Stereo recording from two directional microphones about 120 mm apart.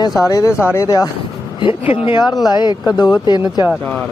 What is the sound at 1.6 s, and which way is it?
Speech, 55° left (ahead or behind).